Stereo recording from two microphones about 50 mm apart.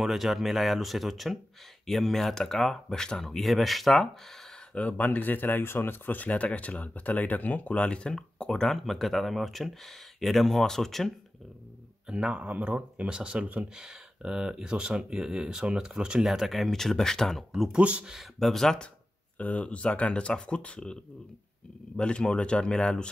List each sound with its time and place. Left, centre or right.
0.0 s speech: centre
4.7 s speech: left; by 8.7 s centre
8.7 s speech: centre
12.1 s speech: right
13.7 s speech: centre
16.3 s speech: centre
17.7 s speech: right
18.0 s speech: centre
18.4 s speech: centre
19.3 s speech: left